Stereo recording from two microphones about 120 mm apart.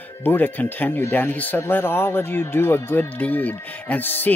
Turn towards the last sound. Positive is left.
turn(degrees=15)  # may be behind; listen again after turning